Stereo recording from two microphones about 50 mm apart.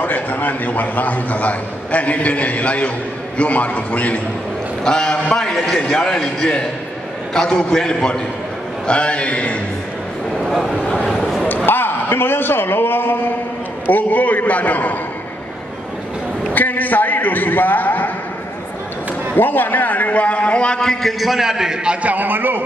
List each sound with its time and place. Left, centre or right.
0.0 s a man's voice: left
4.8 s a man's voice: centre
10.4 s speech: centre
11.4 s a man's voice: left
13.8 s a man's voice: left
16.5 s a man's voice: left
19.3 s a man's voice: left; by 21.1 s centre
21.2 s a man's voice: centre
22.0 s a man's voice: right